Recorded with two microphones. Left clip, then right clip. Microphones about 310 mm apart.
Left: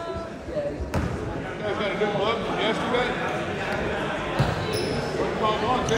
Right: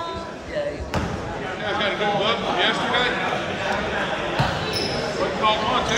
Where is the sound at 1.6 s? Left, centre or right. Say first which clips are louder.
Right 3 dB; centre.